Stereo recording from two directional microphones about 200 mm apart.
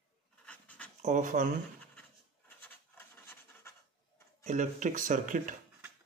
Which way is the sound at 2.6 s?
10° left (ahead or behind).